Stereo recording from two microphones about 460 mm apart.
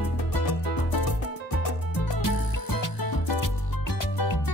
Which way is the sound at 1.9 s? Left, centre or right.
Left.